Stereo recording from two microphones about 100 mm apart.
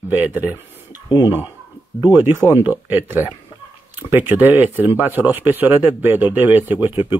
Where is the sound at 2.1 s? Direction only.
20° right (ahead or behind).